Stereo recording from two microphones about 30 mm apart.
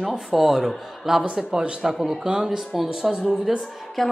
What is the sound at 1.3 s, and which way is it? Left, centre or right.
Speech, right.